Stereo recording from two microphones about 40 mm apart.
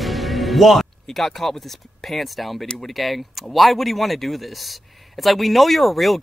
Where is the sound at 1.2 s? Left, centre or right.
Centre.